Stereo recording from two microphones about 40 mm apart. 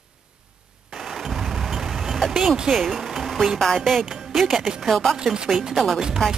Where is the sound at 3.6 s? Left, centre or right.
Centre.